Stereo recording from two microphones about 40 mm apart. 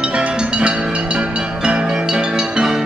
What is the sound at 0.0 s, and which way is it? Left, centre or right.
Music, right.